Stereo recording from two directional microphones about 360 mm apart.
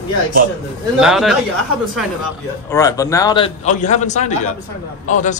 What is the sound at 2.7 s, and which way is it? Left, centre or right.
A man's voice, centre.